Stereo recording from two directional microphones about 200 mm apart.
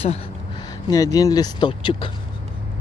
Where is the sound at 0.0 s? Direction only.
30° left (ahead or behind).